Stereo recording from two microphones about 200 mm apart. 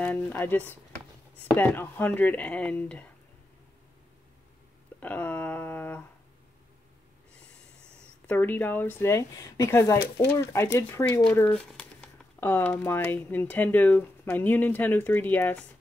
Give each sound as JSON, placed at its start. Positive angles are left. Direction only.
{"t": 0.0, "sound": "speech", "side_deg": 10}
{"t": 5.0, "sound": "speech", "side_deg": 10}
{"t": 8.3, "sound": "speech", "side_deg": 10}